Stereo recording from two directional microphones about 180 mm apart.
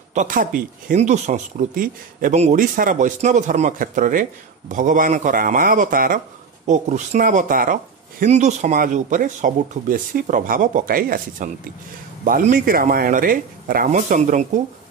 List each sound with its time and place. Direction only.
0.1 s speech: 45° right (ahead or behind)